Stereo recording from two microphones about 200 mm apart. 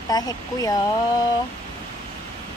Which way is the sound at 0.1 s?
20° left (ahead or behind).